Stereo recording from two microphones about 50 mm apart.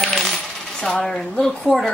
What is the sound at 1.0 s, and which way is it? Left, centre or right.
Speech, centre.